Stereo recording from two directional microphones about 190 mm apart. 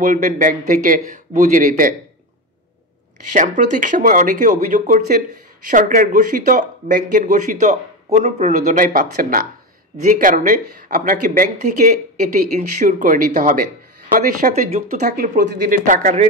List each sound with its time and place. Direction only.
0.0 s speech: 45° right (ahead or behind)
3.3 s speech: 40° right (ahead or behind)